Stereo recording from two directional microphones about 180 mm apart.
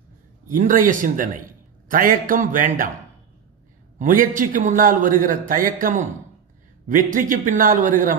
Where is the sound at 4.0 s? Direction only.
50° right (ahead or behind).